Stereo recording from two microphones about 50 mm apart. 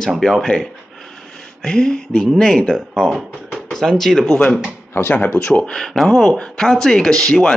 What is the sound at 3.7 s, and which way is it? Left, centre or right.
Speech, centre.